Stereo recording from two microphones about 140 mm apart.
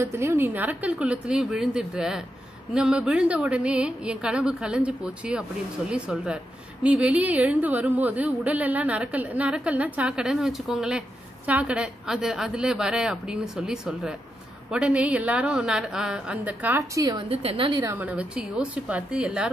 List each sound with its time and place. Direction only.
0.0 s a woman's voice: 20° right (ahead or behind)
16.9 s a woman's voice: 25° right (ahead or behind)
17.3 s a woman's voice: 45° right (ahead or behind)
17.8 s a woman's voice: 15° right (ahead or behind)